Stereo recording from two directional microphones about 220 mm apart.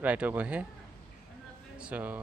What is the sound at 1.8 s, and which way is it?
Speech, 5° right (ahead or behind).